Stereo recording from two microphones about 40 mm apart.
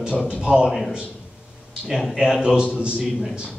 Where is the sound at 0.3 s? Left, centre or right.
Right.